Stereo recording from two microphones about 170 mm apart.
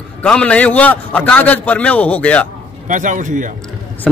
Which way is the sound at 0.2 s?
5° left (ahead or behind).